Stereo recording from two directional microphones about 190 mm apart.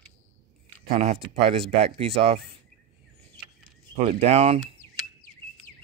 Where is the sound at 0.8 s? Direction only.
35° right (ahead or behind).